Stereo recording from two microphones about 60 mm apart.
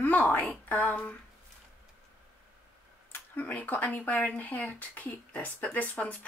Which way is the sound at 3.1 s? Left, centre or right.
Left.